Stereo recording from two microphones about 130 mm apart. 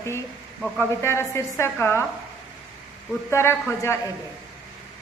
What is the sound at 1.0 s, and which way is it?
A woman's voice, 20° left (ahead or behind).